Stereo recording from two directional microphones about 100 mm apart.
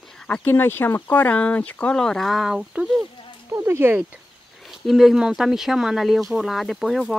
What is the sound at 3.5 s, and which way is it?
Speech, 25° right (ahead or behind).